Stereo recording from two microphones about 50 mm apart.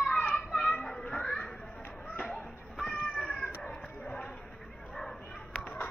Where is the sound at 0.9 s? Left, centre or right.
Centre.